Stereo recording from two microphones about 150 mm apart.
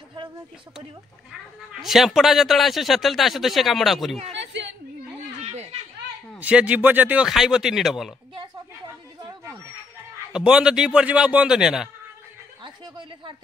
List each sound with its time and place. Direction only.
1.7 s a man's voice: centre (ahead or behind)
5.4 s a sound: 45° right (ahead or behind)
6.4 s a man's voice: 10° right (ahead or behind)
9.2 s a sound: 20° right (ahead or behind)
10.3 s a man's voice: 5° right (ahead or behind)
12.6 s speech: 30° right (ahead or behind)